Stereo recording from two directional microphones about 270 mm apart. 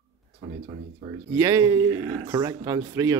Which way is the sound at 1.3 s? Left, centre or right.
Centre.